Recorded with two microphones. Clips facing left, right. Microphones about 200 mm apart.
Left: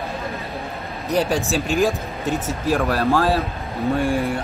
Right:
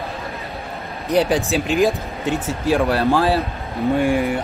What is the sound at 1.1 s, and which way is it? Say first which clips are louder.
Speech: right 3 dB; 15° right (ahead or behind).